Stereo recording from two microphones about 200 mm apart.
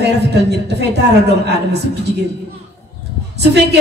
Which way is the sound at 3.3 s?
55° right (ahead or behind).